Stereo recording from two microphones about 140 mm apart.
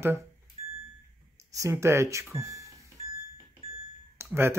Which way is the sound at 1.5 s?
20° right (ahead or behind).